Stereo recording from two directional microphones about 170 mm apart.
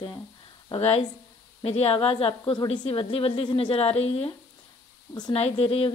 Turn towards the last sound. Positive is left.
turn(degrees=35)  # may be behind; listen again after turning